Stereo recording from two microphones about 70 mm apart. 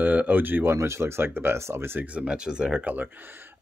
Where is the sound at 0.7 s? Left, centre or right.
Right.